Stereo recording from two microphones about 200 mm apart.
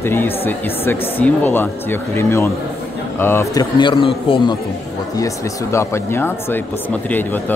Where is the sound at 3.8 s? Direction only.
25° left (ahead or behind).